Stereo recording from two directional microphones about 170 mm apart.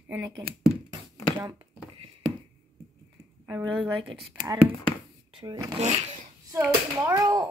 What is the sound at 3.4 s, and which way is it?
Speech, 15° right (ahead or behind).